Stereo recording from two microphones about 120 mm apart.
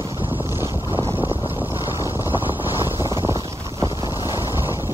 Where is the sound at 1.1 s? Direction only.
15° right (ahead or behind).